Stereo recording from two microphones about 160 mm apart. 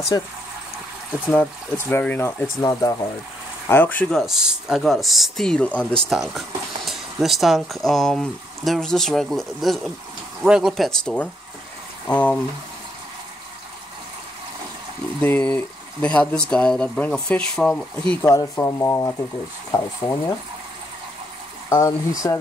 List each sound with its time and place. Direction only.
0.1 s speech: 25° left (ahead or behind)
1.9 s speech: 10° left (ahead or behind)
15.2 s speech: 10° left (ahead or behind)
18.3 s speech: 20° left (ahead or behind)
21.6 s speech: 20° left (ahead or behind)